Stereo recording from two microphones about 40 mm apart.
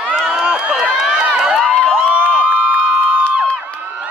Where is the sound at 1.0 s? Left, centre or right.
Centre.